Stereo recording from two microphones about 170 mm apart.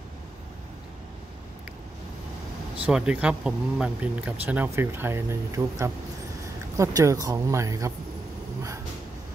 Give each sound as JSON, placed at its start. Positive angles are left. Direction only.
{"t": 2.9, "sound": "speech", "side_deg": -5}